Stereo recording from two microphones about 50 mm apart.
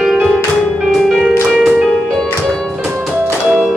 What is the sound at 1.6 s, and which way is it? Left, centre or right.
Music, centre.